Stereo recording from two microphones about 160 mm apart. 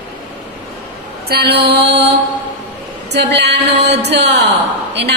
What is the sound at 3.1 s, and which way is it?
Speech, 90° right.